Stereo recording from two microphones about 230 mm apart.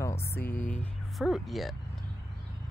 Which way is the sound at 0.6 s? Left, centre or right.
Left.